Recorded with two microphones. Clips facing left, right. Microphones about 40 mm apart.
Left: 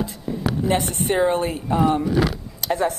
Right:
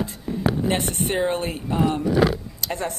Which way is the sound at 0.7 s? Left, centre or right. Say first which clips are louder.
Left 2 dB; right.